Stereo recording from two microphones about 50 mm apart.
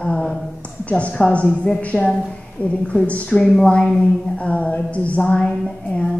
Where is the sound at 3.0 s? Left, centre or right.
Left.